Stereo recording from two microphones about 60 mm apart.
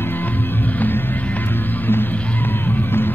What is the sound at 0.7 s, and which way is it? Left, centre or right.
Music, left.